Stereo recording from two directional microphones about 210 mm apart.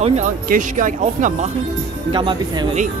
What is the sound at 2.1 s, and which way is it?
Speech, 20° right (ahead or behind).